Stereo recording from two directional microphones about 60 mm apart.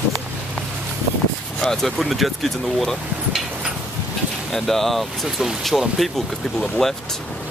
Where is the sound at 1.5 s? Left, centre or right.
Centre.